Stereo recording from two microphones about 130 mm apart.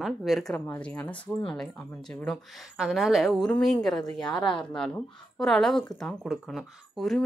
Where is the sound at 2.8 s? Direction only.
Centre (ahead or behind).